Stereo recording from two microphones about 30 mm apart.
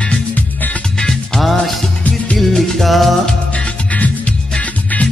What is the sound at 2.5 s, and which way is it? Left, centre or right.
Music, centre.